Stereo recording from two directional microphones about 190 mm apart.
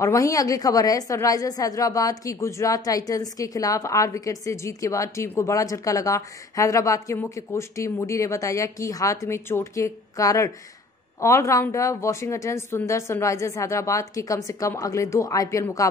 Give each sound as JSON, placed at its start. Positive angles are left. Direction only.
{"t": 0.0, "sound": "a woman's voice", "side_deg": 15}